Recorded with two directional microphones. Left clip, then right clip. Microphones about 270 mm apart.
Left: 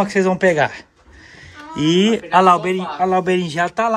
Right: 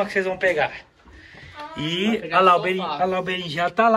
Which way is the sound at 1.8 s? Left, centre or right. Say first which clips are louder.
Left 8 dB; left.